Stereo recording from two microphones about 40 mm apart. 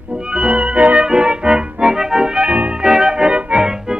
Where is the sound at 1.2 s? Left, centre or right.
Right.